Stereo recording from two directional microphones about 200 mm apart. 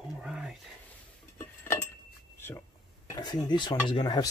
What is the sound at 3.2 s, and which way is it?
Speech, 20° left (ahead or behind).